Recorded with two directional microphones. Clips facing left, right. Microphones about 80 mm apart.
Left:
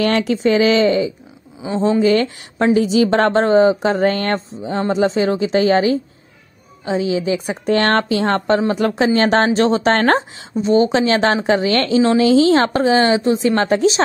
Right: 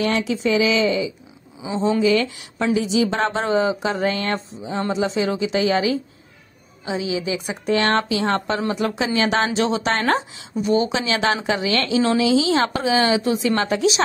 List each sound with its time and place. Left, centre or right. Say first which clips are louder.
0.0 s a woman's voice: left 5 dB; left
3.4 s a woman's voice: left 7 dB; left
10.5 s a woman's voice: left 5 dB; left
13.2 s speech: left 4 dB; left